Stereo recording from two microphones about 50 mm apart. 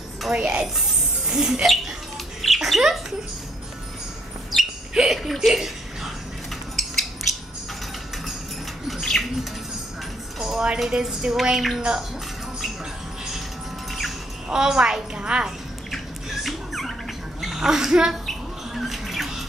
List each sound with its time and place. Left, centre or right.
0.3 s a woman's voice: centre
2.4 s rodents: centre
4.5 s a sound: centre
4.9 s a sound: centre
9.0 s bird: centre
10.4 s a sound: centre
10.9 s a woman's voice: centre
13.9 s speech: centre
15.9 s bird: centre
17.4 s speech: centre
18.2 s squawk: centre